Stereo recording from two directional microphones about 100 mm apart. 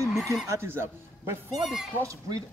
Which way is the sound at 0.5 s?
25° right (ahead or behind).